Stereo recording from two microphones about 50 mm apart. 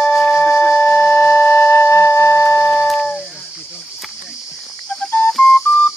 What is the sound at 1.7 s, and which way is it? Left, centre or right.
Music, left.